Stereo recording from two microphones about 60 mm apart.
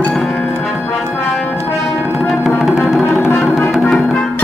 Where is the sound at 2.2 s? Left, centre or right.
Centre.